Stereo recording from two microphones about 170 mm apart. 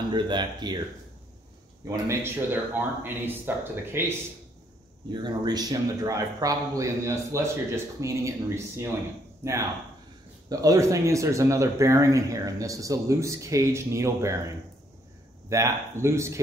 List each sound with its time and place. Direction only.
0.1 s a man's voice: 25° right (ahead or behind)
1.9 s speech: 15° right (ahead or behind)
5.1 s a man's voice: 25° right (ahead or behind)
15.5 s speech: 15° right (ahead or behind)